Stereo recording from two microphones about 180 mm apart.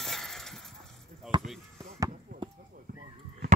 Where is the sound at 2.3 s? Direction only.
55° right (ahead or behind).